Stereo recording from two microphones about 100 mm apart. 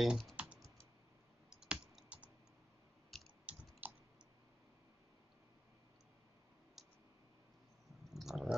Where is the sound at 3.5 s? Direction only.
15° right (ahead or behind).